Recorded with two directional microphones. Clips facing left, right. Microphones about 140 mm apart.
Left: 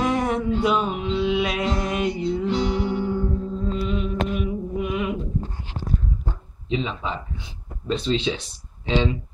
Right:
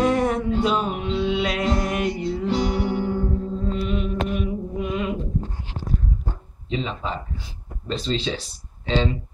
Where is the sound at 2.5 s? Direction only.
45° right (ahead or behind).